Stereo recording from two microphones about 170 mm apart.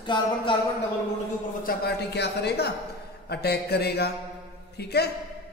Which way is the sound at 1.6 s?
75° left (ahead or behind).